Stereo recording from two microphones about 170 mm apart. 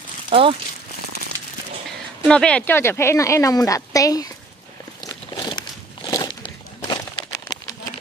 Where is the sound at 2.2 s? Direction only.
5° left (ahead or behind).